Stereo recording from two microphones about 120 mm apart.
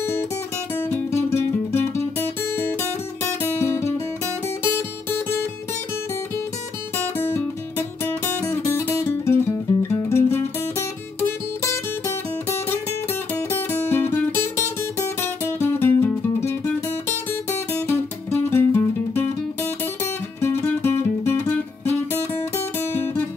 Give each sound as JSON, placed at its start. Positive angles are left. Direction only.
{"t": 0.7, "sound": "music", "side_deg": 20}
{"t": 7.2, "sound": "music", "side_deg": 20}
{"t": 20.3, "sound": "music", "side_deg": 20}